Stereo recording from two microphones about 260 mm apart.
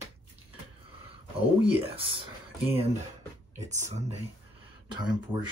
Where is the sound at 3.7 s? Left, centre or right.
Right.